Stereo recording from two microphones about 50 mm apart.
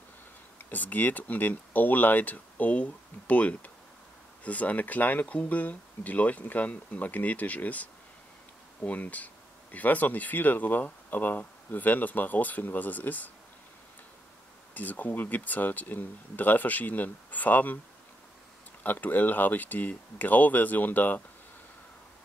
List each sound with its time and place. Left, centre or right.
0.7 s speech: left
14.7 s speech: left
18.8 s speech: left